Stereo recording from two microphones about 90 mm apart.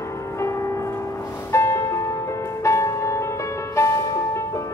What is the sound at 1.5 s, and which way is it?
Music, 30° left (ahead or behind).